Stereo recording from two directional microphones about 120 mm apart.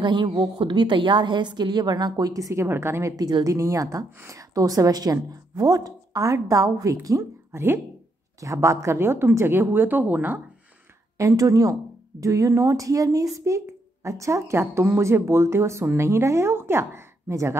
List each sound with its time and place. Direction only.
0.0 s a woman's voice: 40° right (ahead or behind); by 10.4 s 15° right (ahead or behind)
11.1 s a woman's voice: 25° right (ahead or behind)